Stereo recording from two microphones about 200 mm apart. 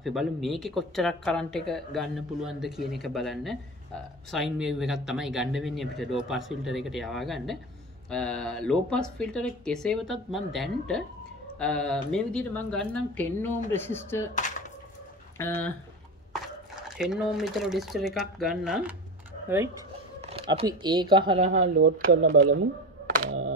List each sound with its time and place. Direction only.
0.0 s speech: centre (ahead or behind)
15.3 s speech: 15° left (ahead or behind)
16.9 s speech: centre (ahead or behind)
20.2 s a sound: 30° right (ahead or behind)
20.6 s speech: 20° right (ahead or behind)
21.9 s speech: 40° right (ahead or behind)